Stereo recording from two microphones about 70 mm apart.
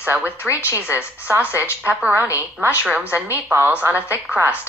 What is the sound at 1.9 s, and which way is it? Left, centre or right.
Speech, right.